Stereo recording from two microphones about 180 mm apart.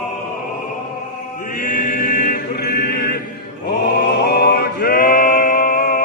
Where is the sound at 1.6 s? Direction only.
45° left (ahead or behind).